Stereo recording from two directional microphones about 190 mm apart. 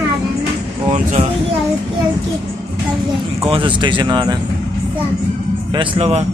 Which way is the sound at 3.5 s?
25° right (ahead or behind).